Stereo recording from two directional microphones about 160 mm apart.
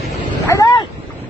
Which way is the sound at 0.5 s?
20° left (ahead or behind).